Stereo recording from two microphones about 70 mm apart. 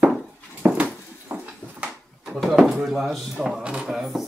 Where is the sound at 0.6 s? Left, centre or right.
Right.